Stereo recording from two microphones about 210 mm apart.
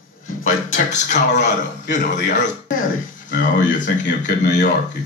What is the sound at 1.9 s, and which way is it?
A man's voice, 35° left (ahead or behind).